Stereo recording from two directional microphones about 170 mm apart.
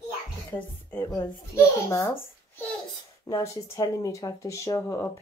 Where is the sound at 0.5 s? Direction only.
10° left (ahead or behind).